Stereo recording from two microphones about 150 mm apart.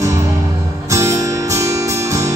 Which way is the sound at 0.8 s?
20° right (ahead or behind).